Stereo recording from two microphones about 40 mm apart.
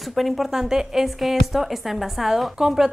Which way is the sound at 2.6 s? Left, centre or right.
Centre.